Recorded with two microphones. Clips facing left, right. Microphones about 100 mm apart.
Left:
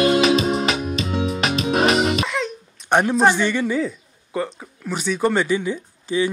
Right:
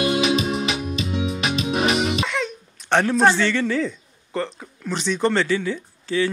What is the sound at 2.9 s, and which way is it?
A man's voice, 15° left (ahead or behind).